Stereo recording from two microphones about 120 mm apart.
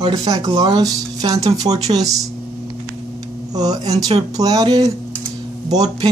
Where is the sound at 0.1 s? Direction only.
30° right (ahead or behind).